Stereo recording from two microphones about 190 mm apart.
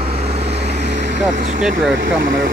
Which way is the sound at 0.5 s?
65° right (ahead or behind).